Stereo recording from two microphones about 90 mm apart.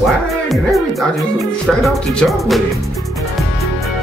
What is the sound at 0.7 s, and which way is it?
Speech, centre (ahead or behind).